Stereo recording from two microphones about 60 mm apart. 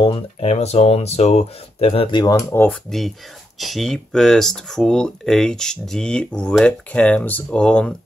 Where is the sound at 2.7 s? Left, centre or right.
Centre; by 7.4 s left.